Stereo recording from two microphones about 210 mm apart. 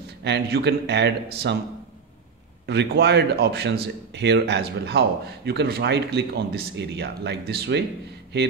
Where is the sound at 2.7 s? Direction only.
55° right (ahead or behind).